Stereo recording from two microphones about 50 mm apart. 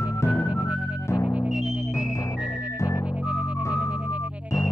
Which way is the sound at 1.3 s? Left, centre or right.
Right.